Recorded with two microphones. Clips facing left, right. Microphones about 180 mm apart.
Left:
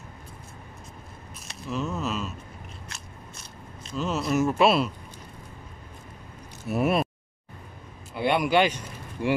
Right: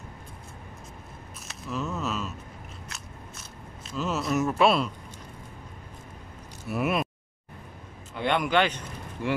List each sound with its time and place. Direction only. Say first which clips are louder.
1.5 s a sound: left 2 dB; centre (ahead or behind)
2.9 s biting: right 1 dB; centre (ahead or behind)
3.8 s speech: left 1 dB; 5° right (ahead or behind)
6.7 s speech: left 3 dB; 30° left (ahead or behind)
8.1 s speech: left 2 dB; 10° left (ahead or behind)